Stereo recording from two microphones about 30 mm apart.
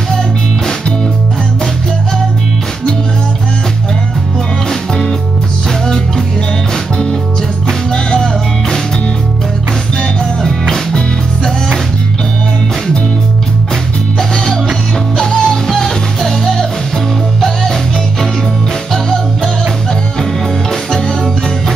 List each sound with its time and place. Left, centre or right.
4.6 s music: centre
7.6 s music: centre
10.9 s music: left
15.1 s music: centre
15.7 s music: centre
19.0 s music: centre